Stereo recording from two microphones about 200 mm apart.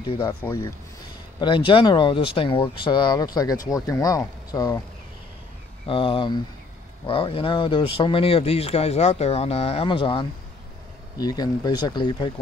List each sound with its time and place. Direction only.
0.0 s speech: 20° left (ahead or behind)
1.4 s speech: 25° left (ahead or behind)
5.9 s speech: 25° left (ahead or behind)